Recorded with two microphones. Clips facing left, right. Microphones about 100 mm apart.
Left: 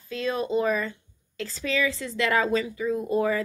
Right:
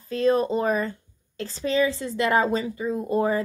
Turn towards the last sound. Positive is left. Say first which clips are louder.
# right 1 dB
turn(degrees=-35)  # may be behind; listen again after turning